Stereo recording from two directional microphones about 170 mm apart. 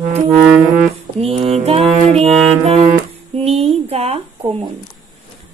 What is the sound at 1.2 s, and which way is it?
Music, 35° right (ahead or behind).